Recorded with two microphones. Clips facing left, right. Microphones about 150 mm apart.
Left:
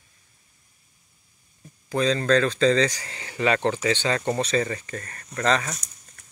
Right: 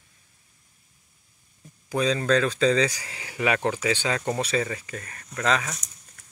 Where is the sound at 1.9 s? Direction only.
10° right (ahead or behind).